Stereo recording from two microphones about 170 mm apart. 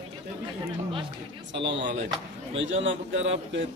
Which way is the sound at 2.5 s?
90° right.